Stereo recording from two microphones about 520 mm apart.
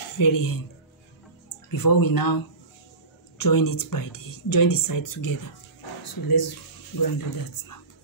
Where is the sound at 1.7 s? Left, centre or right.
Left.